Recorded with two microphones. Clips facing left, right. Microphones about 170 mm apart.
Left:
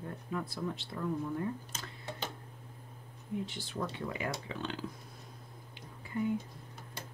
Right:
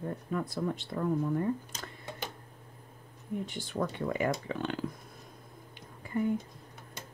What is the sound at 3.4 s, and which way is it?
Speech, 50° right (ahead or behind).